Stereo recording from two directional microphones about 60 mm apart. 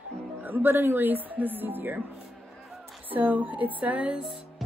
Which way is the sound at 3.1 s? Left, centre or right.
Right.